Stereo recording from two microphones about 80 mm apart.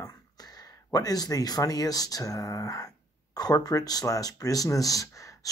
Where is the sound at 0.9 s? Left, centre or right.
Left.